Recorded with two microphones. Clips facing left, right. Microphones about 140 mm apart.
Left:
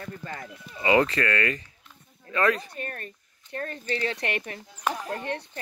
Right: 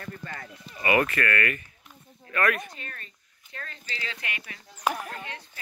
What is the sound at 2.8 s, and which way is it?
Speech, 50° left (ahead or behind).